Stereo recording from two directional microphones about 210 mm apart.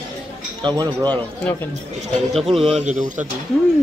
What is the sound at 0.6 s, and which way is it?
Speech, 20° right (ahead or behind).